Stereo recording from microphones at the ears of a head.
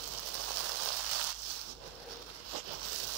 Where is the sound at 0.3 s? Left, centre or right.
Right.